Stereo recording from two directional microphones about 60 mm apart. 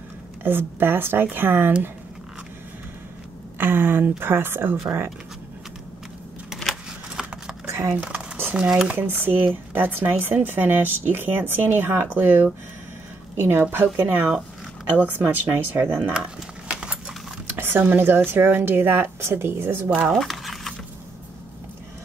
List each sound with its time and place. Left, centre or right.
0.4 s speech: right
3.5 s speech: right
6.5 s keys jangling: centre
7.9 s speech: right
8.9 s speech: right
16.6 s clip-clop: centre
17.5 s speech: right
20.1 s a sound: centre